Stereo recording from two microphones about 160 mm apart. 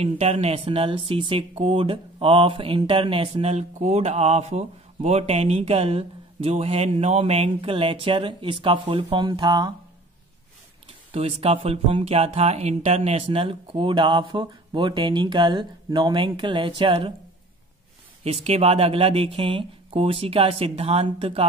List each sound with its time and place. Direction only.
0.0 s speech: 40° right (ahead or behind)
11.1 s speech: 35° right (ahead or behind)
18.2 s speech: 40° right (ahead or behind)